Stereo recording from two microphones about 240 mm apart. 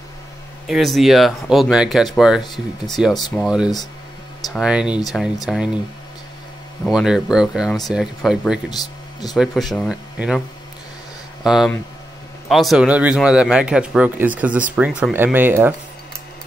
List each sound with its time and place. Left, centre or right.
0.7 s a man's voice: centre
6.9 s a man's voice: centre
8.6 s speech: centre
9.3 s a man's voice: centre
11.4 s a man's voice: centre